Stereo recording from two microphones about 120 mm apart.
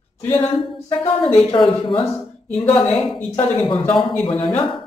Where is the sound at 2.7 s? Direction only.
10° left (ahead or behind).